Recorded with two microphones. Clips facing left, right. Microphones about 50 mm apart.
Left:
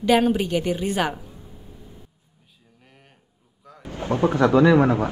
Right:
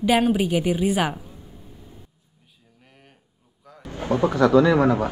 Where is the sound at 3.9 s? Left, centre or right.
Left.